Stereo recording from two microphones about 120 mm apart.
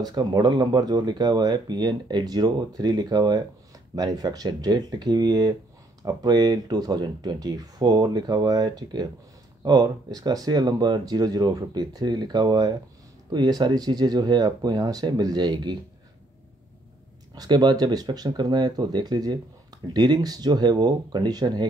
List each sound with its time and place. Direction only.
0.0 s speech: 35° right (ahead or behind)
17.4 s speech: 35° right (ahead or behind)